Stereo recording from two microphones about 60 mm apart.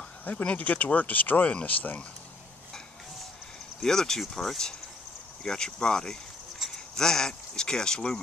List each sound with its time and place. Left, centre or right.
0.2 s speech: left
3.8 s speech: centre
6.6 s a sound: centre
7.0 s speech: centre